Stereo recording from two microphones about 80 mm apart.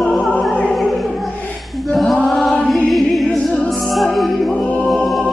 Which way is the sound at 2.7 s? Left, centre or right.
Centre.